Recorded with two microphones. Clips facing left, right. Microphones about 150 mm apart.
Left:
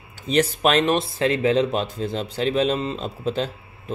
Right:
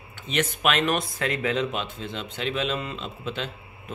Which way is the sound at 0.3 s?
35° left (ahead or behind).